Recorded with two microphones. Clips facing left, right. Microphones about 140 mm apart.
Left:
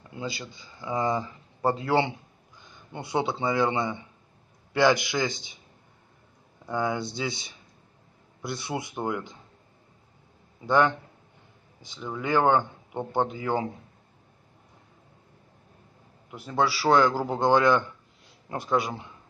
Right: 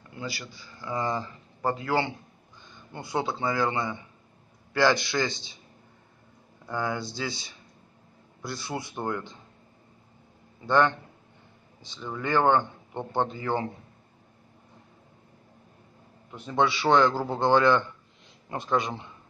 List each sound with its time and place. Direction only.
0.1 s speech: 20° left (ahead or behind)
1.6 s a man's voice: 25° left (ahead or behind)
6.6 s a man's voice: 20° left (ahead or behind)
10.7 s a man's voice: 10° left (ahead or behind)
16.3 s a man's voice: 5° left (ahead or behind)